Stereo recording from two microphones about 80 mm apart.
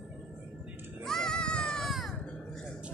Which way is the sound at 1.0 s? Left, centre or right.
Centre.